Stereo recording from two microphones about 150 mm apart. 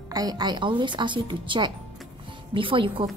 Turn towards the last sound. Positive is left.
turn(degrees=-35)  # may be behind; listen again after turning